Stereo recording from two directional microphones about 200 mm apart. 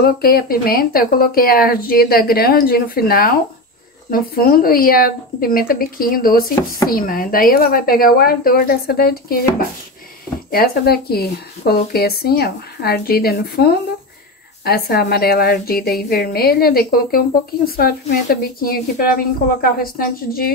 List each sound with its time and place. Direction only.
0.0 s speech: 50° left (ahead or behind)
10.5 s speech: 50° left (ahead or behind)